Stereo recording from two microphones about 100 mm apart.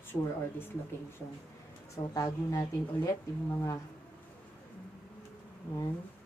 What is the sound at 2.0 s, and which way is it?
A woman's voice, 35° left (ahead or behind).